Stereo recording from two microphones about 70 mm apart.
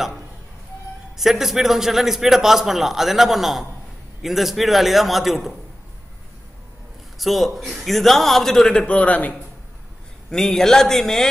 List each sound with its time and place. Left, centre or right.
1.1 s a man's voice: centre
7.2 s a man's voice: centre
8.8 s a man's voice: centre
10.3 s a man's voice: centre